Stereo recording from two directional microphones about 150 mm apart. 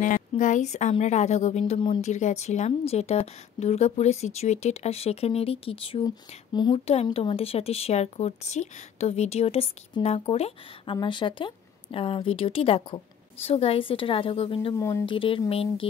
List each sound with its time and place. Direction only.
0.0 s a woman's voice: 60° left (ahead or behind); by 6.0 s 40° left (ahead or behind)
6.0 s a sound: 30° left (ahead or behind)
7.2 s a woman's voice: 40° left (ahead or behind)
11.0 s a woman's voice: 30° left (ahead or behind)
14.8 s a sound: 20° left (ahead or behind)
15.0 s a woman's voice: 35° left (ahead or behind)